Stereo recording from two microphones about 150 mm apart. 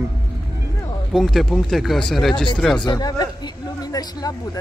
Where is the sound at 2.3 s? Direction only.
35° left (ahead or behind).